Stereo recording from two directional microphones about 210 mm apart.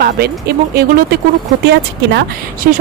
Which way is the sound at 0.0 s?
50° right (ahead or behind).